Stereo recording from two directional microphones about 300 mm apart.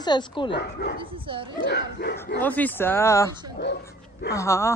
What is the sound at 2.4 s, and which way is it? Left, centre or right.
Speech, centre.